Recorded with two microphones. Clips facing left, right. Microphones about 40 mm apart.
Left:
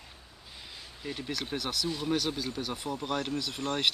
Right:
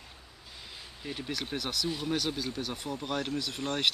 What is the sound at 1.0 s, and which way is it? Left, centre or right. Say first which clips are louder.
Speech: left 1 dB; centre.